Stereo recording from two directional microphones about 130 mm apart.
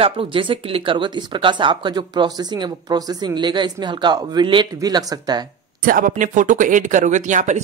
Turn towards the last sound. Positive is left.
turn(degrees=-70)  # may be behind; listen again after turning